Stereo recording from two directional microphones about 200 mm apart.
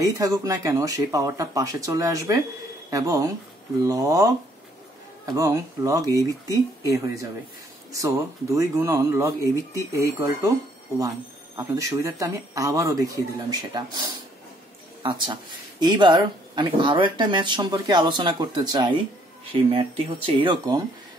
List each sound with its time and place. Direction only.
0.0 s speech: 15° right (ahead or behind)
7.9 s speech: 15° right (ahead or behind)
11.5 s speech: 15° right (ahead or behind)
15.8 s speech: 20° right (ahead or behind)